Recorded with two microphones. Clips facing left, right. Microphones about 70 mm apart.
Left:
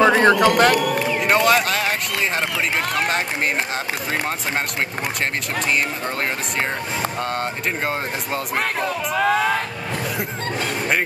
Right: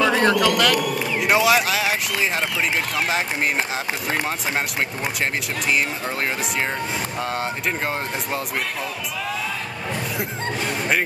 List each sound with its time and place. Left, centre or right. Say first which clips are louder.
0.0 s a man's voice: left 4 dB; left
1.1 s speech: even; centre
7.2 s speech: left 1 dB; centre
8.5 s speech: left 5 dB; left